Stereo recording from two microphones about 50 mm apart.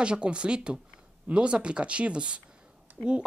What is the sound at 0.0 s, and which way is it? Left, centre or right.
Speech, right.